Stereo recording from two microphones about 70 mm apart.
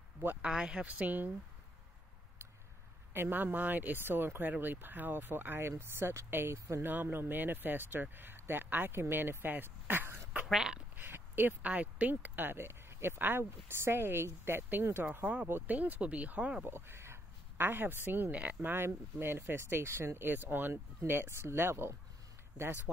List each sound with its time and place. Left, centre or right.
0.4 s speech: centre
3.1 s speech: right
10.4 s speech: centre
11.0 s speech: right
16.6 s a sound: right
18.0 s speech: right